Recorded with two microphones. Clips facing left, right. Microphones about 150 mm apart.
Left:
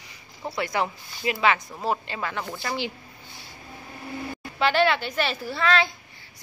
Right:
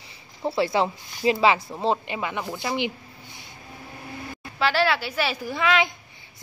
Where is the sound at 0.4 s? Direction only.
25° right (ahead or behind).